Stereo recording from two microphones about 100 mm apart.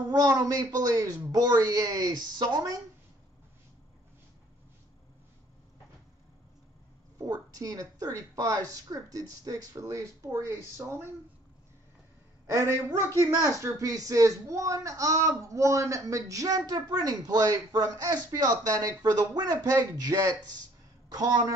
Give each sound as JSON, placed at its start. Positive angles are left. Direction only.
{"t": 0.1, "sound": "speech", "side_deg": -40}
{"t": 7.2, "sound": "speech", "side_deg": -35}
{"t": 12.4, "sound": "speech", "side_deg": -25}